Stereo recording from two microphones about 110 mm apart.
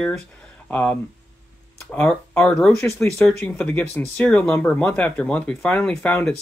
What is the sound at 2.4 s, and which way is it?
Speech, centre (ahead or behind).